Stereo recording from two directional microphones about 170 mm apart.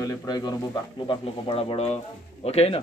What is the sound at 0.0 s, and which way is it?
A man's voice, 20° left (ahead or behind).